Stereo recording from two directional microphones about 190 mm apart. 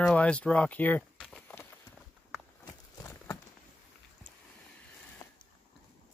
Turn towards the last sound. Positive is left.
turn(degrees=20)  # may be behind; listen again after turning